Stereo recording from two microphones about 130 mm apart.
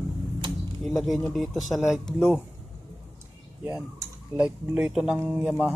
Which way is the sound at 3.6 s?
20° right (ahead or behind).